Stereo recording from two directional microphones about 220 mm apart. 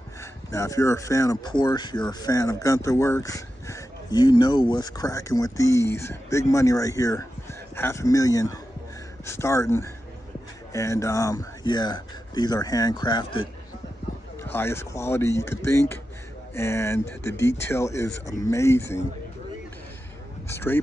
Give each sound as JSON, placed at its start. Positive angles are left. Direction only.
{"t": 0.2, "sound": "speech", "side_deg": 15}
{"t": 14.4, "sound": "speech", "side_deg": 10}
{"t": 20.4, "sound": "speech", "side_deg": 10}